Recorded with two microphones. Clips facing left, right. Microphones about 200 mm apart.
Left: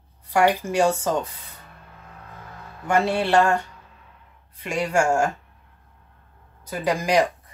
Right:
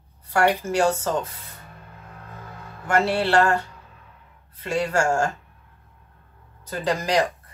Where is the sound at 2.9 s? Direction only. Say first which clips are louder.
Even; 15° left (ahead or behind).